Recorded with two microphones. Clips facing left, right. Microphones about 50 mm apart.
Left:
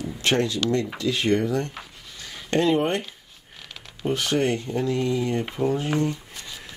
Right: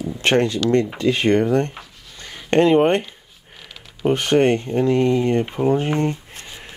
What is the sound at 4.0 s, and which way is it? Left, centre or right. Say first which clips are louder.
Speech: right 7 dB; right.